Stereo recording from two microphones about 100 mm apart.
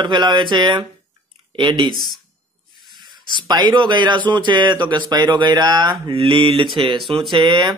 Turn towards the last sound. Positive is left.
turn(degrees=-50)  # may be behind; listen again after turning